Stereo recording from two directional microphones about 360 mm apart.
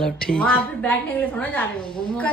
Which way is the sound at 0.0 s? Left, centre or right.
Centre.